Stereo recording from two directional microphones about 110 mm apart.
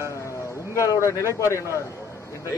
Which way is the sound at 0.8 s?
25° left (ahead or behind).